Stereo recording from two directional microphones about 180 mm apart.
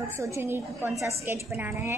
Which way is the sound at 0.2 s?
15° right (ahead or behind).